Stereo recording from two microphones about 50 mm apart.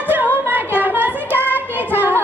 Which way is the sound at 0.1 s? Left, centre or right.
Right.